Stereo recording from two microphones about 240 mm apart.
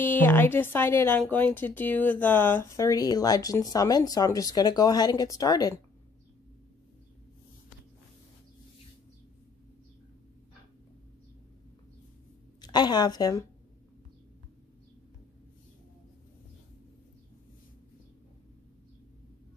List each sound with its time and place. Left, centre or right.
0.0 s speech: centre
12.6 s speech: centre